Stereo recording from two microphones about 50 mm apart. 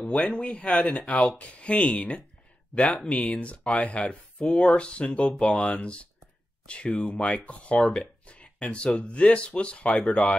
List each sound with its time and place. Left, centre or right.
0.0 s speech: left